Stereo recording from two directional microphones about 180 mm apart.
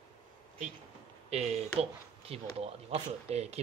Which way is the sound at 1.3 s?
35° right (ahead or behind).